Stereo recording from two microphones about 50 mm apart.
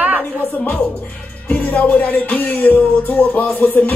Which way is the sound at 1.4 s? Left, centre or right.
Left.